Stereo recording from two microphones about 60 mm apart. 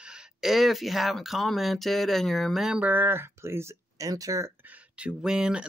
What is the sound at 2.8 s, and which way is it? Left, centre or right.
Speech, right.